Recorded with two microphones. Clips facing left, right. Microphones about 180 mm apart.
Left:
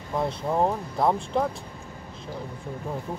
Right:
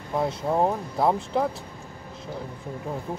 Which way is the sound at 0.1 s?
5° right (ahead or behind).